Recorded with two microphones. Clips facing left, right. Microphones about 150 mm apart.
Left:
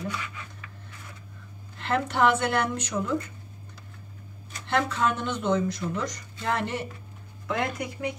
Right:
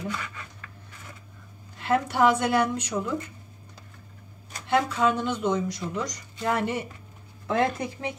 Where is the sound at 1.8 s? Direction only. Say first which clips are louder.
Right 2 dB; 10° right (ahead or behind).